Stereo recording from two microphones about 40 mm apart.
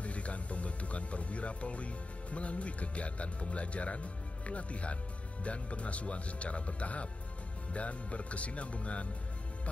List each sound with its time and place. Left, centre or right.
0.0 s speech: left